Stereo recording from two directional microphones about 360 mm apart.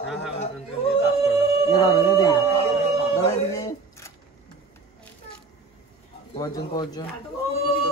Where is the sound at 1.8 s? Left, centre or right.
Centre.